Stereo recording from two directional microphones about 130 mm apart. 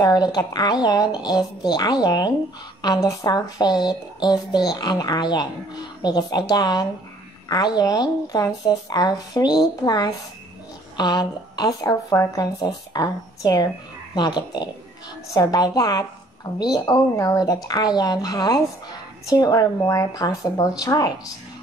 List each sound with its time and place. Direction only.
0.0 s speech: 30° left (ahead or behind)